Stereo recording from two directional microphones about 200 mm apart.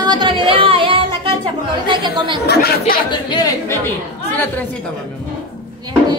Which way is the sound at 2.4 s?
50° left (ahead or behind).